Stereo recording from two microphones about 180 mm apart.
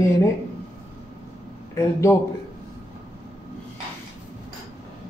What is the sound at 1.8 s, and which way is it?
Speech, 15° left (ahead or behind).